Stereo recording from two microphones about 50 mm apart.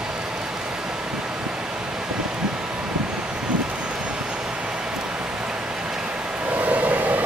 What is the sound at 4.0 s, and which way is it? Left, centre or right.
Vehicle, centre.